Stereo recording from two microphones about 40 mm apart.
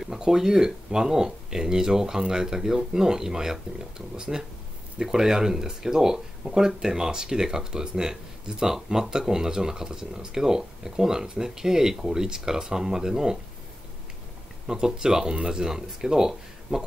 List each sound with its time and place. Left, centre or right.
0.0 s speech: centre
14.7 s speech: centre